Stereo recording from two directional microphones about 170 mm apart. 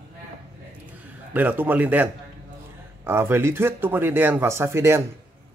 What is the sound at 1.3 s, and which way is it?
Speech, 10° right (ahead or behind).